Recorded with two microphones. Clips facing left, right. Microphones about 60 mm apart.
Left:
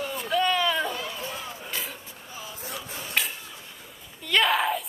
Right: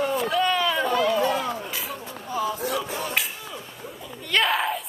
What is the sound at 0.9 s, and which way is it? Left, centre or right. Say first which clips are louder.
Speech: right 12 dB; right.